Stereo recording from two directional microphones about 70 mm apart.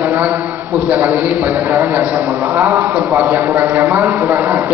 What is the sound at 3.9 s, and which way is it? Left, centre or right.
Speech, right.